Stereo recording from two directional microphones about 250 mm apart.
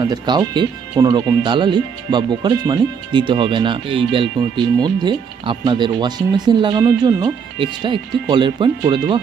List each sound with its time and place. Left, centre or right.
0.0 s speech: centre